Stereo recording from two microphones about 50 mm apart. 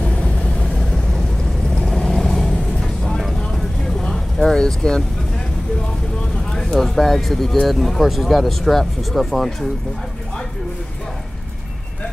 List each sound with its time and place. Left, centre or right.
0.0 s vehicle: centre
6.5 s speech: centre